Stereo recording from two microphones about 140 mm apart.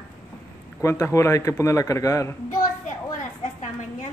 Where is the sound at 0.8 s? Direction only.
20° left (ahead or behind).